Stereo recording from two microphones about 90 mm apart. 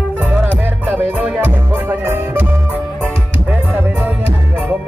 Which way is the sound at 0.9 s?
20° right (ahead or behind).